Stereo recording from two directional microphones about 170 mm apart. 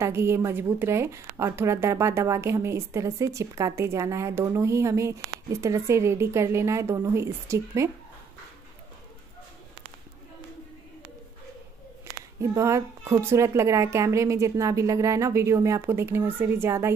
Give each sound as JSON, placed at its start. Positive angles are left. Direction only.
{"t": 0.0, "sound": "a woman's voice", "side_deg": -15}
{"t": 12.4, "sound": "a woman's voice", "side_deg": -15}